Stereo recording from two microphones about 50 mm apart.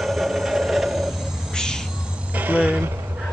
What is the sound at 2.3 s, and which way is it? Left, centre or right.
Music, right.